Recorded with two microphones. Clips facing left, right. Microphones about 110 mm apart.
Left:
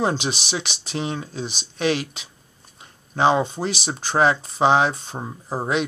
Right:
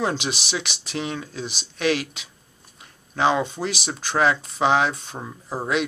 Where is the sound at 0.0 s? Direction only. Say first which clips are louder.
Left 2 dB; 30° left (ahead or behind).